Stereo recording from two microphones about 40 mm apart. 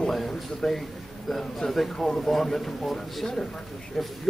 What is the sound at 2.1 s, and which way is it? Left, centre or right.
Speech, centre.